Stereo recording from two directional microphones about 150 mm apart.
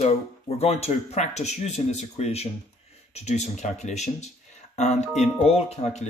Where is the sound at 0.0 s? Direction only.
45° left (ahead or behind).